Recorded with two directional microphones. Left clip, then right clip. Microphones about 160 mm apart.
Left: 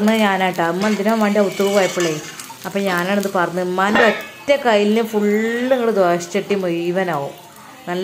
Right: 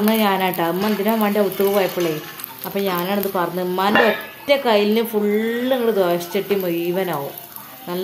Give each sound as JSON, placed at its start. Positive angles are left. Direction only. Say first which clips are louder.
{"t": 0.0, "sound": "speech", "louder": "left 2 dB", "side_deg": 0}